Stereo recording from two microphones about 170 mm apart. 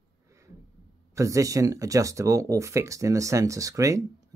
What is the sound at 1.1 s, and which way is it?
Speech, 20° right (ahead or behind).